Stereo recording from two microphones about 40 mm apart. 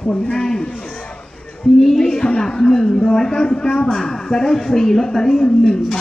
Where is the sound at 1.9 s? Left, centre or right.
Centre.